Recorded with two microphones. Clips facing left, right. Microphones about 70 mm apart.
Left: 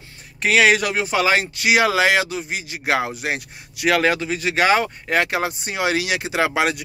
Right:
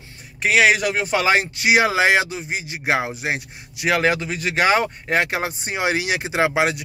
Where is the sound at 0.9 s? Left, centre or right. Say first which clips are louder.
Even; right.